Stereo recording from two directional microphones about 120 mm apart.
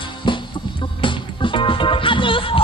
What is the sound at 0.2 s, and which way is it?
Music, 45° left (ahead or behind).